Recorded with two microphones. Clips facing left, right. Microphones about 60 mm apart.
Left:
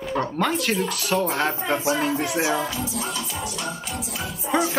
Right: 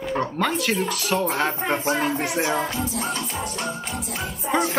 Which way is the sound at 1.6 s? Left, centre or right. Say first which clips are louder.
Even; right.